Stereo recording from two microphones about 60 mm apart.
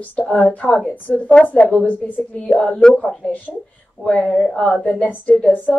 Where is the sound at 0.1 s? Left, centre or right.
Left.